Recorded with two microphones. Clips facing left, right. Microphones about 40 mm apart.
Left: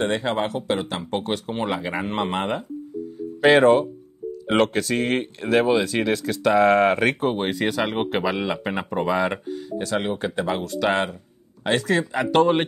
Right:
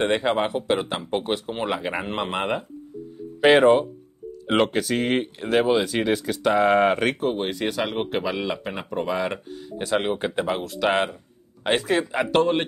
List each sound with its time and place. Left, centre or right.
0.0 s speech: right; by 9.6 s centre
9.8 s speech: centre
10.5 s speech: centre
12.4 s speech: centre